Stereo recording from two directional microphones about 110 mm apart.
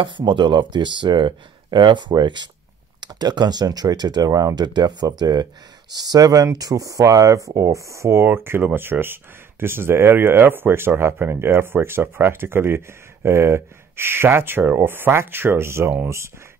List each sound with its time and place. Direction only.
0.0 s speech: 45° right (ahead or behind); by 16.3 s 20° right (ahead or behind)